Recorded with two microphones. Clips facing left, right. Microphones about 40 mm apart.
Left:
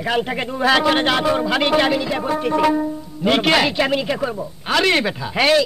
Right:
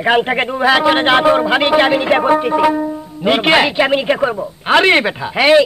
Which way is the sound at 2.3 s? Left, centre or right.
Centre.